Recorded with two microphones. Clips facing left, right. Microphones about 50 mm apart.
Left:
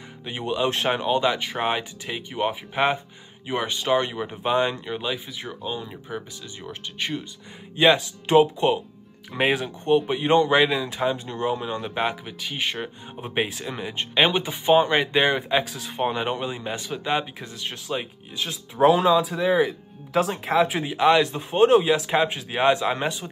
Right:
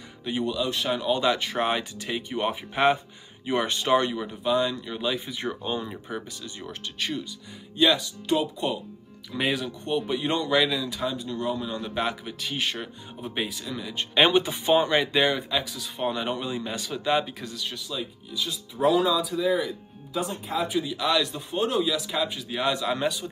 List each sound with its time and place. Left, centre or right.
0.3 s speech: left
1.0 s speech: centre
4.0 s speech: left
4.4 s speech: left
4.8 s speech: centre
5.1 s speech: centre
6.7 s speech: left
7.7 s speech: left
11.8 s speech: left
13.2 s speech: left
14.1 s speech: centre
14.9 s speech: left
20.8 s speech: left